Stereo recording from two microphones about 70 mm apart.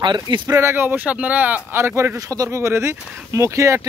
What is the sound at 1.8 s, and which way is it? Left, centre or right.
Speech, right.